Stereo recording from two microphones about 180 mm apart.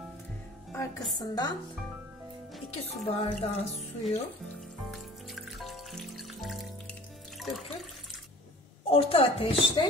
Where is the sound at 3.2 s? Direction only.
35° left (ahead or behind).